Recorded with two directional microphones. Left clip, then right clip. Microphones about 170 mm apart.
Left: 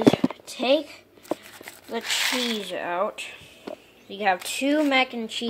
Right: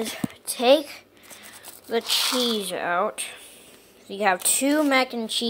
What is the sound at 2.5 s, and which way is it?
Speech, 15° right (ahead or behind).